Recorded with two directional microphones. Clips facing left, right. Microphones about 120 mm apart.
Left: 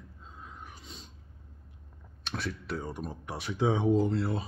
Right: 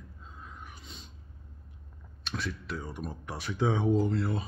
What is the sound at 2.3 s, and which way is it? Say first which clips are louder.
Speech: left 1 dB; 55° left (ahead or behind).